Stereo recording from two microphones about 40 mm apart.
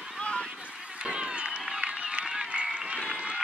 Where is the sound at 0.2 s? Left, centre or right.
Left.